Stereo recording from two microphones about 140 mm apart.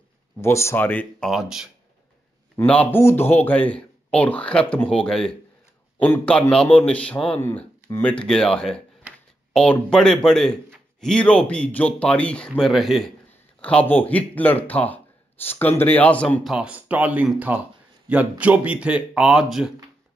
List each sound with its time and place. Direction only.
0.4 s speech: 20° left (ahead or behind)
1.3 s speech: 5° right (ahead or behind)
2.6 s speech: 10° left (ahead or behind)
16.4 s speech: 5° right (ahead or behind)